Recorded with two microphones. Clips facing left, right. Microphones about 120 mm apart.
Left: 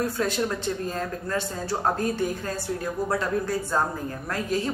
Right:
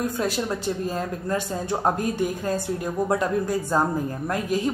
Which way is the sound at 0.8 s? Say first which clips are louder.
Right 3 dB; 15° right (ahead or behind).